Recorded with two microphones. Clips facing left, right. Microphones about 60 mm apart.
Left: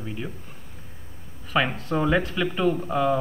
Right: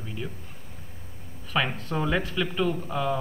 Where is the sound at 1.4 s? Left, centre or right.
Centre.